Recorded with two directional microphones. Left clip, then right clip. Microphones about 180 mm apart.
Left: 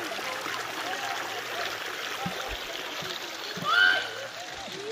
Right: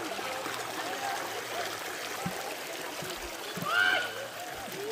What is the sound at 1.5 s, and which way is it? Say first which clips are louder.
Stream: left 3 dB; 25° right (ahead or behind).